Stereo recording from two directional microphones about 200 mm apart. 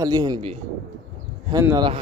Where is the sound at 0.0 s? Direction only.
20° right (ahead or behind).